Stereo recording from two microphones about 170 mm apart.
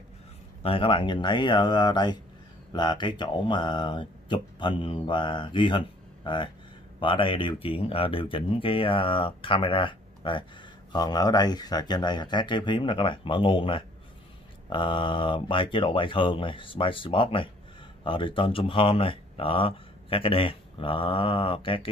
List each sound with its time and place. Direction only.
0.6 s speech: 30° left (ahead or behind)